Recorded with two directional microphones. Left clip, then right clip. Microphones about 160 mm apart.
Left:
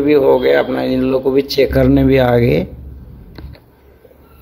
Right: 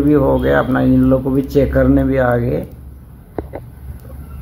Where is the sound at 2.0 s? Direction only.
50° left (ahead or behind).